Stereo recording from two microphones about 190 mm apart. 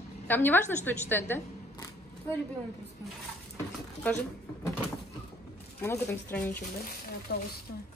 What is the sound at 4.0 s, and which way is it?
Speech, 10° left (ahead or behind).